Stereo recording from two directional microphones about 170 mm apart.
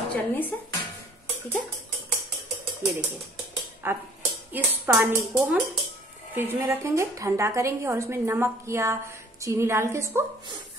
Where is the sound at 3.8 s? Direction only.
10° right (ahead or behind).